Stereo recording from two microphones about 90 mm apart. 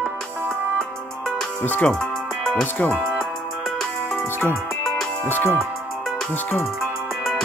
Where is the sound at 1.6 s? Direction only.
20° left (ahead or behind).